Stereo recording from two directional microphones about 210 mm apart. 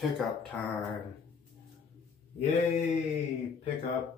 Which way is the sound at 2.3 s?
30° left (ahead or behind).